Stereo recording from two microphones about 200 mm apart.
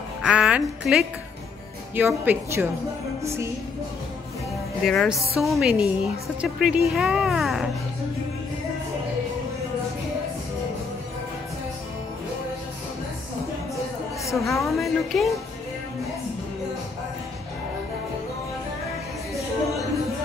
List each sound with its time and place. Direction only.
0.2 s a woman's voice: 5° right (ahead or behind)
4.8 s a woman's voice: centre (ahead or behind)
14.3 s a woman's voice: centre (ahead or behind)